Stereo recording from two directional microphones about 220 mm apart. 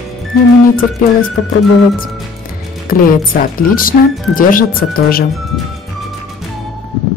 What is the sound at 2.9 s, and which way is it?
A woman's voice, 40° left (ahead or behind).